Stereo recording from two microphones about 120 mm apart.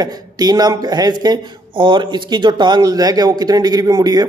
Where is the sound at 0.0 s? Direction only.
35° right (ahead or behind).